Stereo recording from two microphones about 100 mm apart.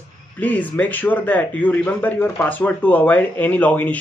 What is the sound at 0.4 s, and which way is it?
A man's voice, 15° left (ahead or behind).